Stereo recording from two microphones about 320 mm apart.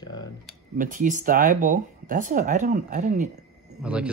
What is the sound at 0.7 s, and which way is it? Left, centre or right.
Speech, right.